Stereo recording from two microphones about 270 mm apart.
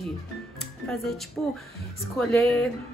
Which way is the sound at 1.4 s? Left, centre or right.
Centre.